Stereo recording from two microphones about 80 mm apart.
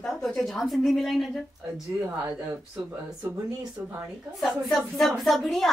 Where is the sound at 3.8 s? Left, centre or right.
Right.